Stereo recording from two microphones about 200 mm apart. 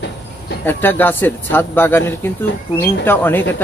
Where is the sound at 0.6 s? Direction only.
10° left (ahead or behind).